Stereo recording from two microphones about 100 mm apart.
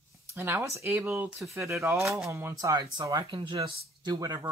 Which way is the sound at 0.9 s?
20° right (ahead or behind).